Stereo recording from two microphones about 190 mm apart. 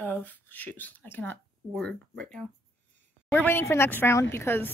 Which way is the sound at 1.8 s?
5° left (ahead or behind).